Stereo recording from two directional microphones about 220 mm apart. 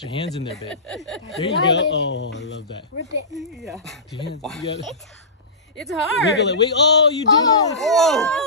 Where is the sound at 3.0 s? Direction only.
90° left.